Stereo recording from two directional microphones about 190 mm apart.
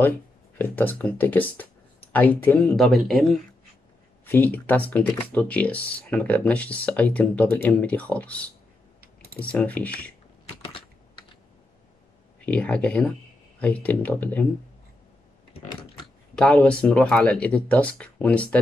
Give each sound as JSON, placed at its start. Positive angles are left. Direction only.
{"t": 0.6, "sound": "speech", "side_deg": 10}
{"t": 12.4, "sound": "speech", "side_deg": 5}
{"t": 16.3, "sound": "speech", "side_deg": 5}